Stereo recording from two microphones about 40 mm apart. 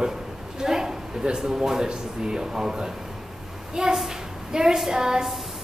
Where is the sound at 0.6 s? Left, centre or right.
Centre.